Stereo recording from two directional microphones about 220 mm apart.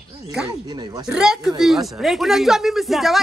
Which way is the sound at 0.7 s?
20° right (ahead or behind).